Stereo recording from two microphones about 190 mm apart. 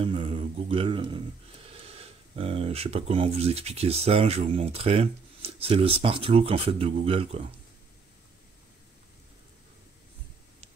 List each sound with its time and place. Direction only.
0.0 s speech: 30° right (ahead or behind)